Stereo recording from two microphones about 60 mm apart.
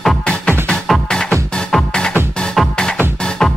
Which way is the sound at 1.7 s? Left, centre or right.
Centre.